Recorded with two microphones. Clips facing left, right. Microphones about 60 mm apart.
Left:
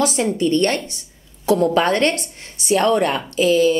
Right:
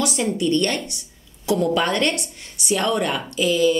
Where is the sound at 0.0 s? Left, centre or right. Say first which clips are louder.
Left 3 dB; left.